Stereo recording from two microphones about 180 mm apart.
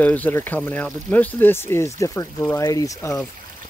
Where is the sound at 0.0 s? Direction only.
10° left (ahead or behind).